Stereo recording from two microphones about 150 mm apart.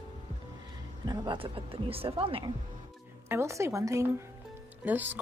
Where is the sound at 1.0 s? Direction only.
30° right (ahead or behind).